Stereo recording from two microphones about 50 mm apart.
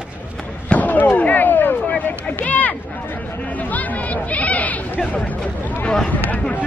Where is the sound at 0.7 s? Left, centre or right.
Left.